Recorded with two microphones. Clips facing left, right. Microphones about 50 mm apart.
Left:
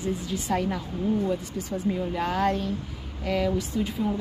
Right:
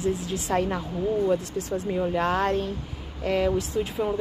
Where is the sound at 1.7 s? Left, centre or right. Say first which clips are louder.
Left 1 dB; centre.